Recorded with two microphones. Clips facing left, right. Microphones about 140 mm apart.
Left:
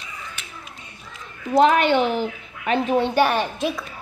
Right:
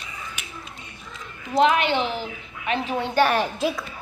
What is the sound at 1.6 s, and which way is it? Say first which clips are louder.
A woman's voice: left 3 dB; 45° left (ahead or behind).